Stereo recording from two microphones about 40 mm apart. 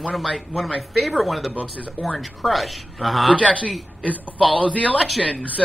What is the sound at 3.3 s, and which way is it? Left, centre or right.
Speech, left.